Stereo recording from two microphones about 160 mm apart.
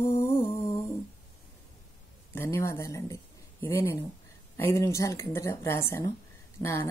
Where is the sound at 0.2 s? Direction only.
15° left (ahead or behind).